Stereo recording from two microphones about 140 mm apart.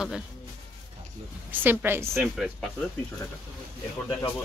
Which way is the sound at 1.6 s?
15° right (ahead or behind).